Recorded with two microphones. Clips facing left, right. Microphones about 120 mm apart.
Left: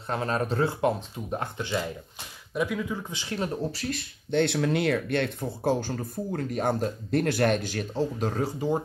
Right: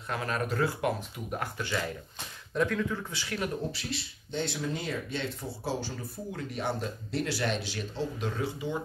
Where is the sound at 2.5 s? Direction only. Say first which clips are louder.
Even; 10° left (ahead or behind).